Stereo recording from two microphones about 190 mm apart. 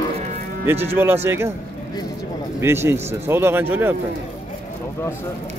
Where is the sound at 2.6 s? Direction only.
15° right (ahead or behind).